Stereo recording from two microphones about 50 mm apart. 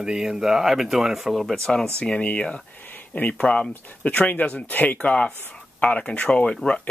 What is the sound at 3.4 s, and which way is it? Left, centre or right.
Speech, left.